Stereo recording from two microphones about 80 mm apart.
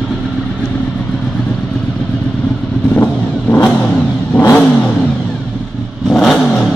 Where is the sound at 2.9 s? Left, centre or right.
Left.